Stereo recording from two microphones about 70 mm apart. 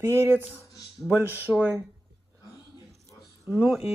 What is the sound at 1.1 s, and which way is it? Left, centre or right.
Speech, right.